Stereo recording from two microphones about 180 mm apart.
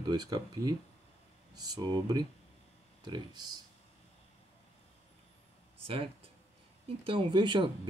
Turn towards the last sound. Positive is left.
turn(degrees=-25)  # may be behind; listen again after turning